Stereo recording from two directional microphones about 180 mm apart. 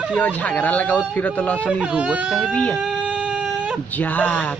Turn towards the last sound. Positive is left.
turn(degrees=10)  # may be behind; listen again after turning